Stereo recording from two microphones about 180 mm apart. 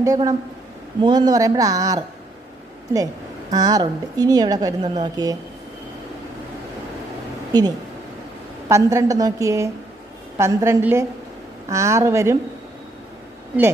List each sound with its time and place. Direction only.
0.0 s a woman's voice: 20° right (ahead or behind)
8.6 s a woman's voice: 15° right (ahead or behind)